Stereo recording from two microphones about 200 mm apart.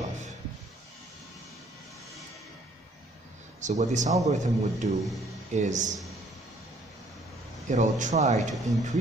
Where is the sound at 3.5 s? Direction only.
35° right (ahead or behind).